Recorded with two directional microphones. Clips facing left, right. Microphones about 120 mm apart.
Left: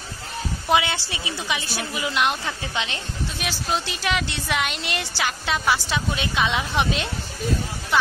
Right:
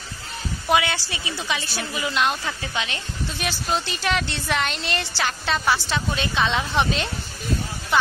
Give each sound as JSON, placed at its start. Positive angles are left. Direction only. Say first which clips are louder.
{"t": 0.7, "sound": "a woman's voice", "louder": "even", "side_deg": 20}
{"t": 3.3, "sound": "a woman's voice", "louder": "right 1 dB", "side_deg": 5}